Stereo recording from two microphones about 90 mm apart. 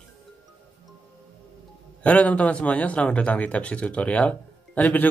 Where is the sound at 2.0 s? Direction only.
15° left (ahead or behind).